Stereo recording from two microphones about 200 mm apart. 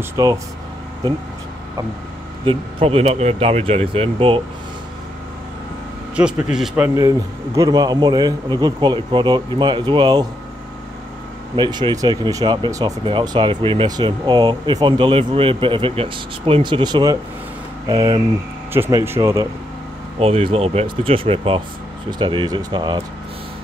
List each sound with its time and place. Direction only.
0.0 s speech: 15° right (ahead or behind)
2.4 s speech: 25° right (ahead or behind)
6.1 s a man's voice: 5° right (ahead or behind)
7.0 s speech: 20° right (ahead or behind)
11.5 s speech: 20° right (ahead or behind)
20.2 s speech: 30° right (ahead or behind)